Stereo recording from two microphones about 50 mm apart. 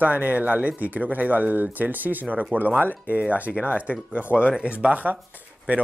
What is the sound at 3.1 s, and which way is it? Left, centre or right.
Speech, right.